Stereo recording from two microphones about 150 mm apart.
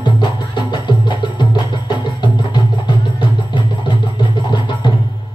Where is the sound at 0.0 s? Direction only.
30° left (ahead or behind).